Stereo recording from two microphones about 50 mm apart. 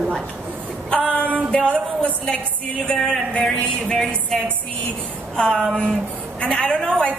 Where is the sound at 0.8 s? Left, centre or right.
Left.